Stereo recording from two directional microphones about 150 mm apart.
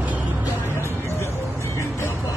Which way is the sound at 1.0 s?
15° left (ahead or behind).